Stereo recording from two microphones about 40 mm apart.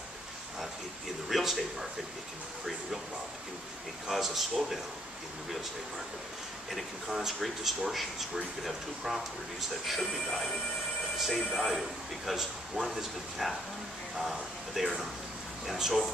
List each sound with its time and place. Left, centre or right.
1.3 s speech: centre
4.1 s speech: centre
7.1 s speech: centre